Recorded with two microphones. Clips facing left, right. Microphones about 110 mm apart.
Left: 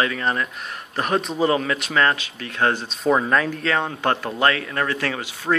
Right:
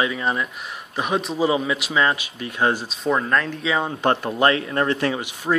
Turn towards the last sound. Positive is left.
turn(degrees=-15)  # may be behind; listen again after turning